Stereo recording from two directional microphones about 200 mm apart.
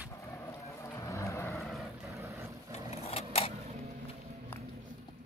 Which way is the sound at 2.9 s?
30° left (ahead or behind).